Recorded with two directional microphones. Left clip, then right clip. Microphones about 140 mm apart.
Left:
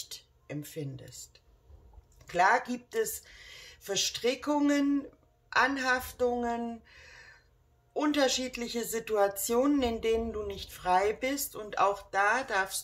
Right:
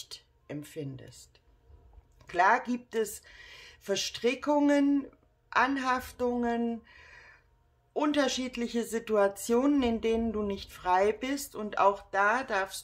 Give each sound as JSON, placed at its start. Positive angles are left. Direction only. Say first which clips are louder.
{"t": 0.1, "sound": "speech", "louder": "even", "side_deg": -35}